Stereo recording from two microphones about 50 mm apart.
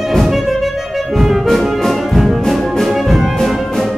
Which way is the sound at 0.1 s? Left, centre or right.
Centre.